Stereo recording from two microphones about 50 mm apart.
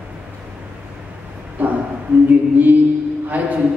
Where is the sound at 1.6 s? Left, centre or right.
Right.